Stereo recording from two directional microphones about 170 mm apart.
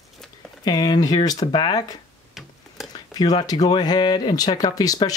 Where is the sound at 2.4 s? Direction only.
Centre (ahead or behind).